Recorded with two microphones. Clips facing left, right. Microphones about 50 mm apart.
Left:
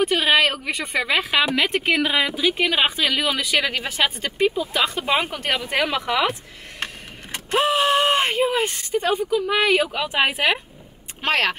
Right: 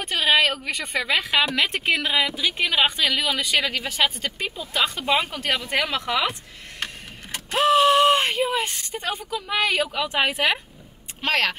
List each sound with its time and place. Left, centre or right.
0.0 s a woman's voice: centre
3.6 s a woman's voice: centre
7.3 s vehicle: centre
7.9 s a woman's voice: centre